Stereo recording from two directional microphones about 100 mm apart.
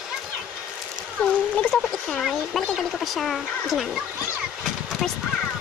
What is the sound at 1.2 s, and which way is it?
Speech, 15° left (ahead or behind).